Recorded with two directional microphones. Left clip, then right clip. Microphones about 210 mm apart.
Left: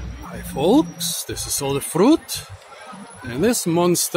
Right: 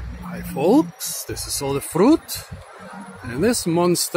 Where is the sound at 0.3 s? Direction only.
5° left (ahead or behind).